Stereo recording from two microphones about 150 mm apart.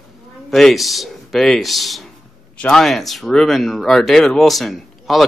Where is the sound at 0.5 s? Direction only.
Centre (ahead or behind).